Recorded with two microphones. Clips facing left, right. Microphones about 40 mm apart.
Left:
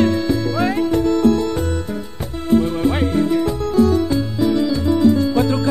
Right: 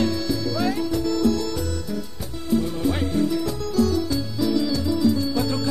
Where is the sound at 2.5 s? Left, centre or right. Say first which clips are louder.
Left 6 dB; left.